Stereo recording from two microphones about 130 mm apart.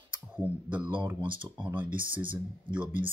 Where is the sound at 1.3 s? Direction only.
40° right (ahead or behind).